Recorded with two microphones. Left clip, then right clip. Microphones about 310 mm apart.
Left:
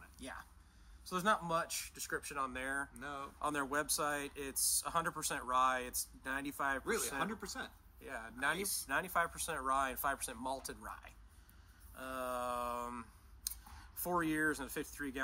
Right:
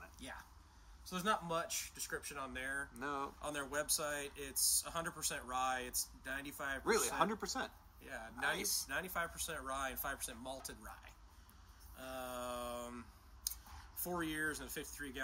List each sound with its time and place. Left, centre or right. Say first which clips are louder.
0.2 s a sound: left 3 dB; centre
1.0 s speech: left 3 dB; centre
2.9 s speech: right 3 dB; centre
3.3 s speech: left 4 dB; centre
7.2 s speech: right 3 dB; centre
8.0 s speech: left 2 dB; centre
8.5 s speech: right 1 dB; centre
8.8 s speech: left 5 dB; centre